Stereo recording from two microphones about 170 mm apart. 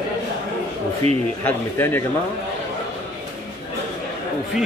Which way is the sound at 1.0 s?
40° right (ahead or behind).